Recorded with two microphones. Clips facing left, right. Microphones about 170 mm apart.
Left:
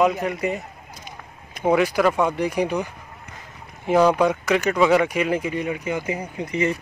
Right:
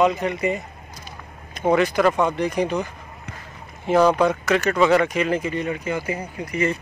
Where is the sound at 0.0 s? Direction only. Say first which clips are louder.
Right 1 dB; 5° left (ahead or behind).